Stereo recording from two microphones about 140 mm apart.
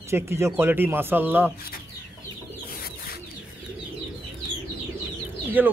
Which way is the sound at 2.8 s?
90° left.